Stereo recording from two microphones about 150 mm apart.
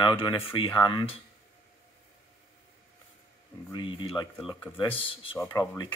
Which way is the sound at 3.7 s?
30° left (ahead or behind).